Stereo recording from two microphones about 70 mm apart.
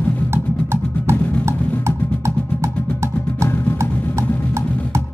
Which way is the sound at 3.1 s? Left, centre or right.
Left.